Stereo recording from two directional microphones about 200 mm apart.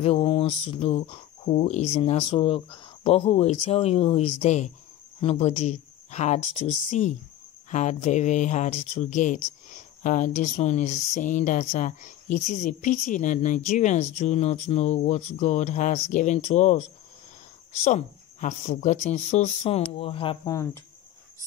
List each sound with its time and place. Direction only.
0.0 s speech: 30° left (ahead or behind)
17.8 s speech: 35° left (ahead or behind); by 20.8 s 15° left (ahead or behind)